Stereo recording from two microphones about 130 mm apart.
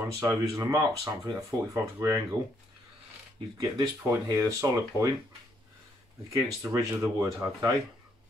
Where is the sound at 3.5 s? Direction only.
30° right (ahead or behind).